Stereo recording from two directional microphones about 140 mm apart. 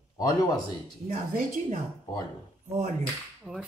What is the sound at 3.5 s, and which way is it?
Speech, centre (ahead or behind).